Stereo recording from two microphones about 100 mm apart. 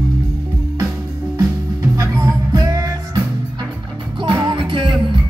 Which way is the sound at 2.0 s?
35° right (ahead or behind).